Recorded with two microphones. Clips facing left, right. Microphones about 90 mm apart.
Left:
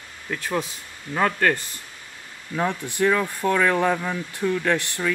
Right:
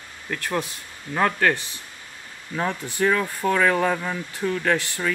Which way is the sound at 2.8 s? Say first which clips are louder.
Even; 15° right (ahead or behind).